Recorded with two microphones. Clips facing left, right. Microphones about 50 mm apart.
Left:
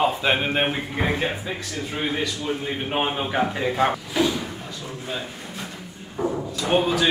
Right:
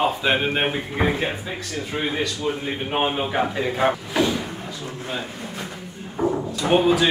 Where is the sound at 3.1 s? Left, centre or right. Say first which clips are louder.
Right 1 dB; centre.